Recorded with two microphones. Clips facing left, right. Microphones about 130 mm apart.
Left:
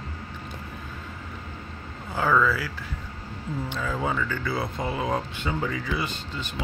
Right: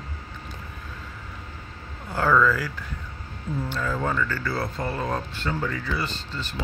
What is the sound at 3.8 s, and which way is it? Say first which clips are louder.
Speech: right 1 dB; 5° left (ahead or behind).